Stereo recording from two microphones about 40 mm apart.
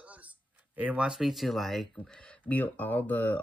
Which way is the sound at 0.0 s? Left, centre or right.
Right.